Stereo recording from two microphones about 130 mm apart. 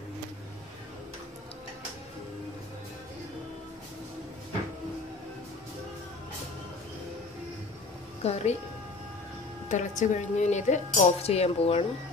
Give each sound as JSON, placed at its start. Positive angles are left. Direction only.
{"t": 8.2, "sound": "a woman's voice", "side_deg": 55}
{"t": 9.7, "sound": "speech", "side_deg": 70}